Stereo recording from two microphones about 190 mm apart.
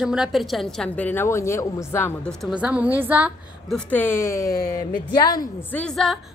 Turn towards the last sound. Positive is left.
turn(degrees=0)  # may be behind; listen again after turning